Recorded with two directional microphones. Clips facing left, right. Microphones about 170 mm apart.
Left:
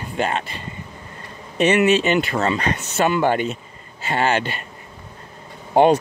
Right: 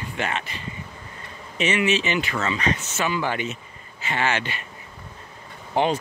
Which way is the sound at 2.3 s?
40° left (ahead or behind).